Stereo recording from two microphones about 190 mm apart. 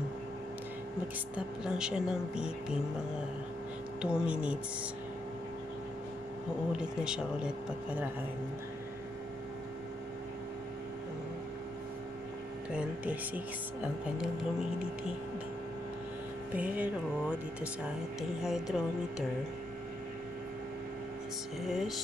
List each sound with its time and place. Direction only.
1.3 s speech: 5° right (ahead or behind)
4.0 s speech: 5° right (ahead or behind)
6.8 s speech: 5° right (ahead or behind)
12.7 s speech: 10° right (ahead or behind)
16.5 s speech: 10° right (ahead or behind)
21.6 s speech: centre (ahead or behind)